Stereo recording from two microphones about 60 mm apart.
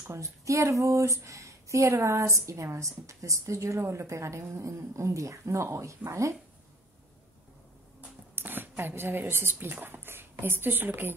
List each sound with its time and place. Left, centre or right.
0.1 s a woman's voice: right
8.4 s speech: right